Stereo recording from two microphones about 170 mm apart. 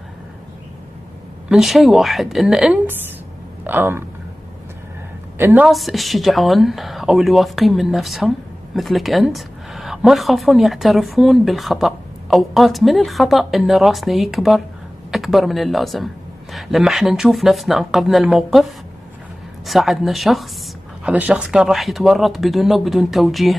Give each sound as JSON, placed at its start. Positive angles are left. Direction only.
{"t": 1.5, "sound": "a woman's voice", "side_deg": 0}
{"t": 5.4, "sound": "speech", "side_deg": -10}
{"t": 5.7, "sound": "a woman's voice", "side_deg": 0}